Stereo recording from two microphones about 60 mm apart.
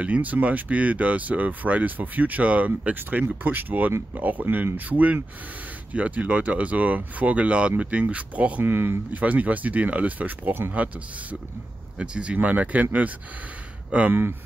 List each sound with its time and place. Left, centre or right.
0.0 s speech: right
8.6 s speech: right
9.1 s speech: right
12.0 s speech: centre
13.9 s speech: right